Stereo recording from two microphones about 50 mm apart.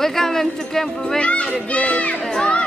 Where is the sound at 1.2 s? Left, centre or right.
Left.